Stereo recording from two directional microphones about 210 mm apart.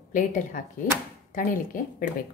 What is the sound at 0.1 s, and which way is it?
A woman's voice, 40° left (ahead or behind).